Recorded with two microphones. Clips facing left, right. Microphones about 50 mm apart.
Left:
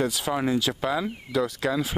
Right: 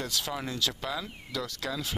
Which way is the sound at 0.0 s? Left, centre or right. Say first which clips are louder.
Left 8 dB; centre.